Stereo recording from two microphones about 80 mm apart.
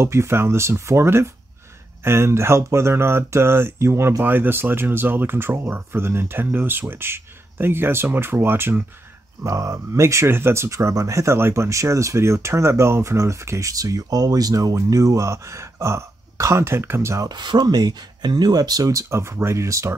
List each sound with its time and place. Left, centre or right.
0.0 s speech: right
9.4 s speech: right
17.3 s speech: right